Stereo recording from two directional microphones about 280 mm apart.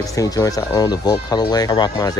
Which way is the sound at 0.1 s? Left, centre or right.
Centre.